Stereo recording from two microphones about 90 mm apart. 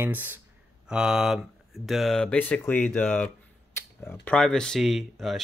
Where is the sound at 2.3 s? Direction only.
15° left (ahead or behind).